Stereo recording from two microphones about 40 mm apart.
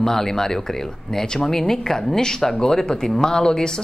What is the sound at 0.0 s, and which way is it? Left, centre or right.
A man's voice, centre.